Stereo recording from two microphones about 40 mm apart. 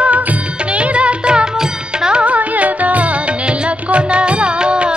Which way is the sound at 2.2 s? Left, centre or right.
Right.